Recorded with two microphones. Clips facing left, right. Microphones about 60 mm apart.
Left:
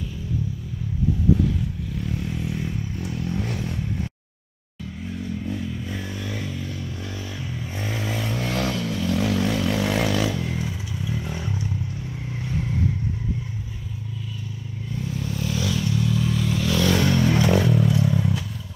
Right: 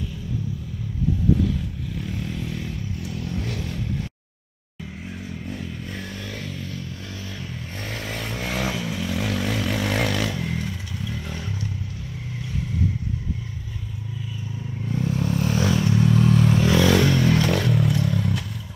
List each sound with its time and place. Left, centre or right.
2.4 s vehicle: centre
8.1 s vehicle: centre
14.9 s vehicle: right
16.9 s vehicle: centre